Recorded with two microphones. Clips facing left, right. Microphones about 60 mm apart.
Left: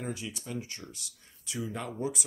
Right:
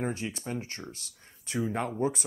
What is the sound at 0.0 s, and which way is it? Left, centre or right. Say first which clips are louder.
Speech: right 5 dB; right.